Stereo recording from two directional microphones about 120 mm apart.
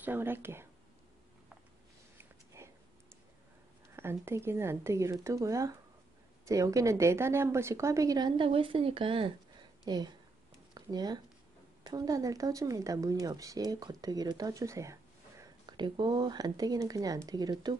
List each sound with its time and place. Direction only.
0.0 s speech: 15° right (ahead or behind)
2.1 s a sound: 20° right (ahead or behind)
3.9 s speech: 20° right (ahead or behind); by 9.3 s 45° right (ahead or behind)
9.8 s speech: 35° right (ahead or behind)
10.7 s a sound: 35° right (ahead or behind)
11.8 s speech: 35° right (ahead or behind)
15.6 s speech: 40° right (ahead or behind)